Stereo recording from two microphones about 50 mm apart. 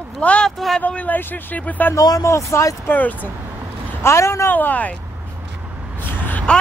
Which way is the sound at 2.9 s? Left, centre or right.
Left.